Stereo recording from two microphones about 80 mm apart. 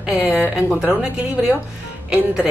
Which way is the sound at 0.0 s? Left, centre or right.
Centre.